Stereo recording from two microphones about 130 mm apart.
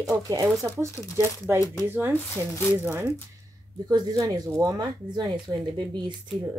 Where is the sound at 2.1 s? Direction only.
15° left (ahead or behind).